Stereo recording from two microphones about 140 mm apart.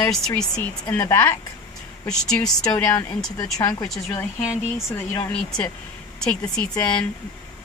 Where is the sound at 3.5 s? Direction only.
20° left (ahead or behind).